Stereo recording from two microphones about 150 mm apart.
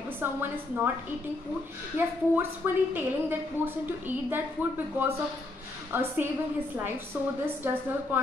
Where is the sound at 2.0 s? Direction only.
15° right (ahead or behind).